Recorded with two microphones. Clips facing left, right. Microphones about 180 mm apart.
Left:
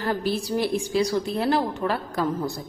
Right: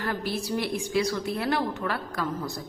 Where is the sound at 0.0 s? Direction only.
30° left (ahead or behind).